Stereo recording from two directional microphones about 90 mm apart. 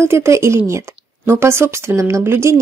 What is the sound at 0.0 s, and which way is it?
A woman's voice, 30° right (ahead or behind).